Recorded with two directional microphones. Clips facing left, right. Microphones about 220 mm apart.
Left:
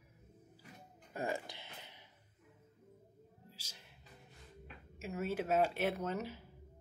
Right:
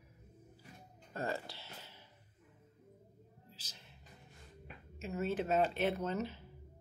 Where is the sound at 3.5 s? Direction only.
10° left (ahead or behind).